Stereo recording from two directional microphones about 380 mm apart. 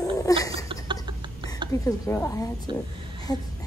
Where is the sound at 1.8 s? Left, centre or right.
Centre.